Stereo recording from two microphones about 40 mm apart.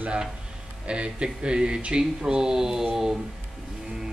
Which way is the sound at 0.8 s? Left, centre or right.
Right.